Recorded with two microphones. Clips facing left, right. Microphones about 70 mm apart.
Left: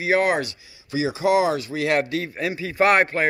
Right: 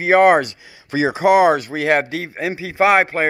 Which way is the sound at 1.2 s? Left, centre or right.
Right.